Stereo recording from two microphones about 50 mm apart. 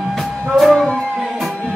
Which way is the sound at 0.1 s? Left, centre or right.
Centre.